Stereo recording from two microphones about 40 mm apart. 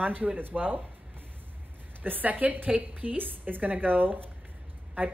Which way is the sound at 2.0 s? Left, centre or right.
Right.